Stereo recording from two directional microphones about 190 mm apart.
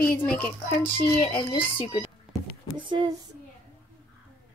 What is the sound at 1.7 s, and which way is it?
Speech, 30° left (ahead or behind).